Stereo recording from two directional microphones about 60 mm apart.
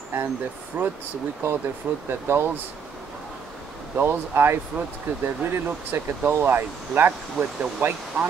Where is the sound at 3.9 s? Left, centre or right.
Right.